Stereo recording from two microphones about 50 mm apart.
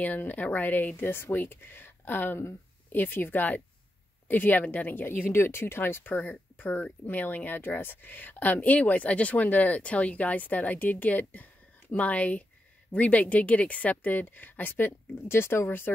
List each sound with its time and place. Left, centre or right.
0.0 s speech: left